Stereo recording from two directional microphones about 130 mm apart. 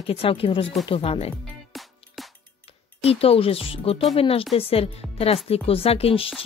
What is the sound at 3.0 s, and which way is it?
Speech, 50° left (ahead or behind).